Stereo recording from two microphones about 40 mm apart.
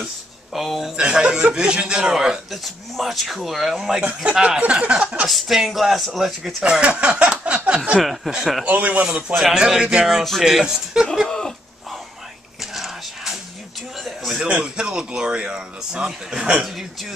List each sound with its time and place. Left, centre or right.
0.6 s speech: centre
0.9 s a man's voice: right
2.5 s speech: centre
4.2 s a man's voice: right
5.3 s speech: centre
6.8 s a sound: right
8.0 s speech: centre
8.6 s speech: right
9.5 s speech: centre
11.2 s dog: centre
12.7 s a sound: centre
14.6 s a man's voice: centre
16.1 s speech: centre